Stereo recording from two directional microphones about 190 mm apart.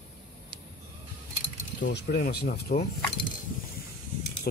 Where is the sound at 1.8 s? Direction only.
65° left (ahead or behind); by 2.8 s 45° left (ahead or behind).